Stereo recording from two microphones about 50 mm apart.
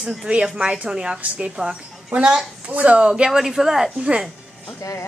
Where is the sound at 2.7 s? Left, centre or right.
Right.